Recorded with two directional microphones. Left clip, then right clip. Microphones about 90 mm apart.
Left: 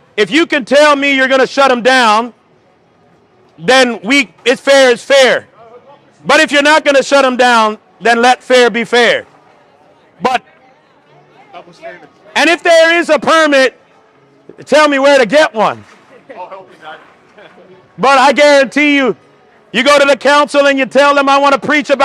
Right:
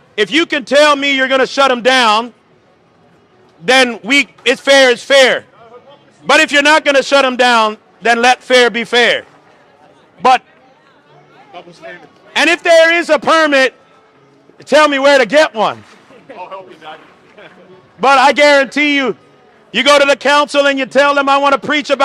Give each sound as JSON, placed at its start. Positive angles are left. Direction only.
{"t": 0.1, "sound": "a man's voice", "side_deg": 45}
{"t": 3.6, "sound": "a man's voice", "side_deg": 40}
{"t": 10.2, "sound": "a man's voice", "side_deg": 55}
{"t": 11.5, "sound": "a man's voice", "side_deg": -25}
{"t": 12.3, "sound": "a man's voice", "side_deg": 40}
{"t": 16.3, "sound": "a sound", "side_deg": 5}
{"t": 18.0, "sound": "a man's voice", "side_deg": 45}
{"t": 18.7, "sound": "a man's voice", "side_deg": 45}
{"t": 19.7, "sound": "a man's voice", "side_deg": 35}